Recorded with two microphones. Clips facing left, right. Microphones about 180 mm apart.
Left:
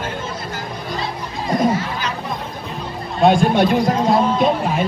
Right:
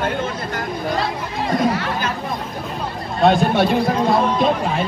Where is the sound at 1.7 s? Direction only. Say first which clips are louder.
Right 1 dB; 65° right (ahead or behind).